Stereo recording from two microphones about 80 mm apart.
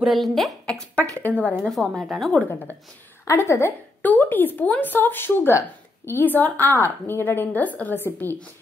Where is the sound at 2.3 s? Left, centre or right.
Left.